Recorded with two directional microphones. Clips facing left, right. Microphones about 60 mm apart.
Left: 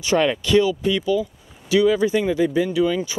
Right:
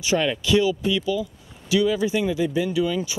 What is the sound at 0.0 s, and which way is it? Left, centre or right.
Speech, left.